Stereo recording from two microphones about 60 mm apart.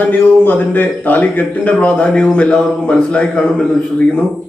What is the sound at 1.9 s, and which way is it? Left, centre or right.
A man's voice, centre.